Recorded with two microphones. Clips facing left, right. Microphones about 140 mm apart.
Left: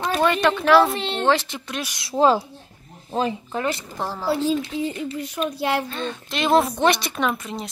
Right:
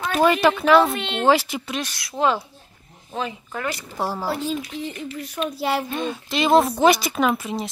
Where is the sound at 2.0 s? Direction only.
30° left (ahead or behind).